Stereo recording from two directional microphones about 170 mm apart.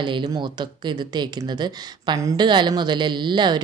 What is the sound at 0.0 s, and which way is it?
Speech, 25° right (ahead or behind).